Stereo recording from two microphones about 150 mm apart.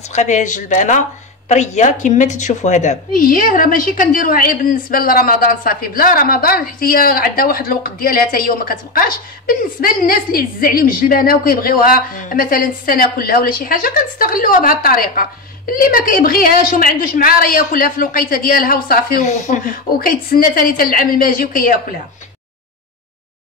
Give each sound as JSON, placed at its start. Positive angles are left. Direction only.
{"t": 0.1, "sound": "a woman's voice", "side_deg": 55}
{"t": 19.2, "sound": "a woman's voice", "side_deg": 55}